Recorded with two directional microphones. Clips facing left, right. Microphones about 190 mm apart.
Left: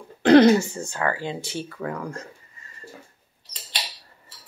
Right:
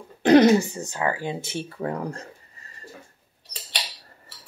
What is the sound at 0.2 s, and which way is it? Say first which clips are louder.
Speech: left 1 dB; 20° right (ahead or behind).